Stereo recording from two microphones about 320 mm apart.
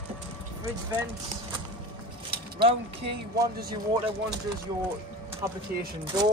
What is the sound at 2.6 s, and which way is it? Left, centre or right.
Speech, centre.